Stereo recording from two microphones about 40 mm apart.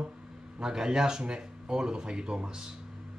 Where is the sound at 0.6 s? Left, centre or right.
Centre.